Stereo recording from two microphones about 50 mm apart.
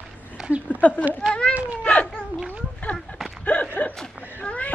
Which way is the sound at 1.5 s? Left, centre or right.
Right.